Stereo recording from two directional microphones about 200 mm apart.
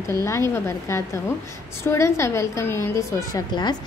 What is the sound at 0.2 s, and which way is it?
A woman's voice, 15° left (ahead or behind).